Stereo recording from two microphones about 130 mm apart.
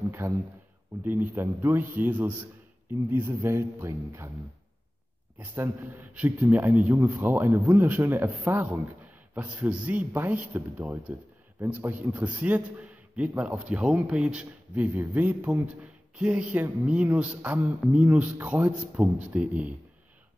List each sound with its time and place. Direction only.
0.2 s a man's voice: 20° right (ahead or behind)
5.4 s a man's voice: 15° right (ahead or behind)